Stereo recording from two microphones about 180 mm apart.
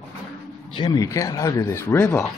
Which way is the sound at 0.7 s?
25° left (ahead or behind).